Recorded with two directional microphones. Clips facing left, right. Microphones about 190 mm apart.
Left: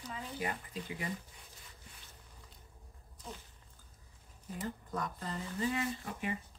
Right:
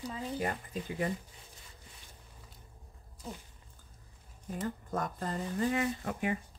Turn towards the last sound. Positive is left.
turn(degrees=-55)  # may be behind; listen again after turning